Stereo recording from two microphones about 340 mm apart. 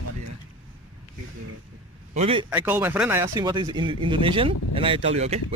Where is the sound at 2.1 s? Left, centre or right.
Centre.